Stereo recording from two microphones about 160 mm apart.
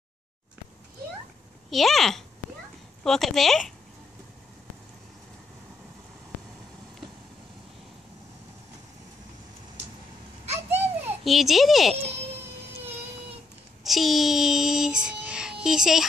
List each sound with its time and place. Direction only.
1.7 s a child's voice: centre (ahead or behind)
10.4 s a sound: 40° right (ahead or behind)
11.2 s a child's voice: centre (ahead or behind)
13.8 s music: centre (ahead or behind)